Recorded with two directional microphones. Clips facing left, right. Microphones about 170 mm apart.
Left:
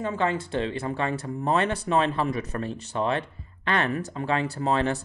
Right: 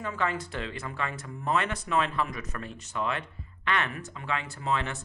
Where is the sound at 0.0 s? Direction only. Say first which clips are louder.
Left 5 dB; 30° left (ahead or behind).